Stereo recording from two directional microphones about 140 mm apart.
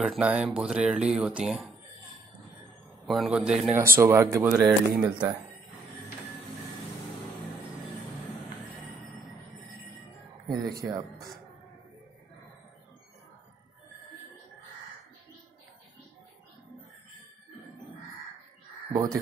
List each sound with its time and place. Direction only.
0.0 s speech: 5° right (ahead or behind)
3.1 s speech: 5° right (ahead or behind)
3.7 s speech: 15° right (ahead or behind)
4.4 s speech: 5° right (ahead or behind)
4.9 s speech: 30° right (ahead or behind)
10.8 s speech: 10° right (ahead or behind)
18.9 s speech: 25° right (ahead or behind)